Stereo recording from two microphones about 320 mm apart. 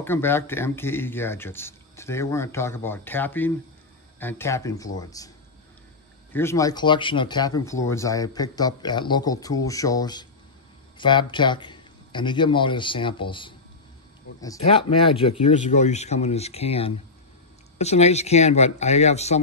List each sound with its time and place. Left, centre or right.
0.0 s speech: centre
6.3 s speech: centre